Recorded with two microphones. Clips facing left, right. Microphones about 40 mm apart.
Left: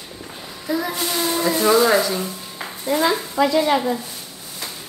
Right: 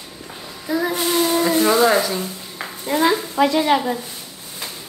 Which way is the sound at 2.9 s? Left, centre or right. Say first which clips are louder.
Right 1 dB; right.